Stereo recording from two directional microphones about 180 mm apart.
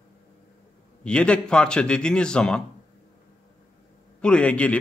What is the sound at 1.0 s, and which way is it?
A man's voice, 5° left (ahead or behind).